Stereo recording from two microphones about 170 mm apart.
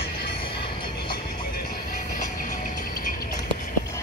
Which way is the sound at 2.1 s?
55° left (ahead or behind).